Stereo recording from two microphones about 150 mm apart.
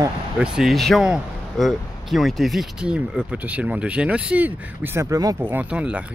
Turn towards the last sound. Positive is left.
turn(degrees=-5)  # may be behind; listen again after turning